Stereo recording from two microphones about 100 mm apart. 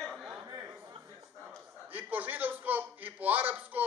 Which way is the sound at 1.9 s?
20° right (ahead or behind).